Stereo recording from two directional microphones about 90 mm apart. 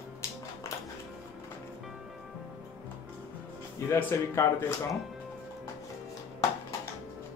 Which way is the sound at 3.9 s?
30° left (ahead or behind).